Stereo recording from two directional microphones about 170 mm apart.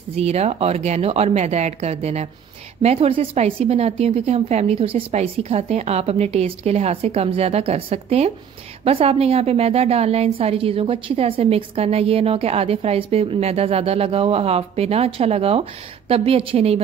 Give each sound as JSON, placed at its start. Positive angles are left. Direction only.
{"t": 0.1, "sound": "a woman's voice", "side_deg": -40}